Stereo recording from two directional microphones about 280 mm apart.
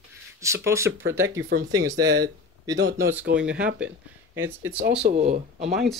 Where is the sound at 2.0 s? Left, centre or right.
Right.